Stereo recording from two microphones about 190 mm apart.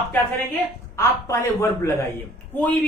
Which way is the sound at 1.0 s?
15° left (ahead or behind).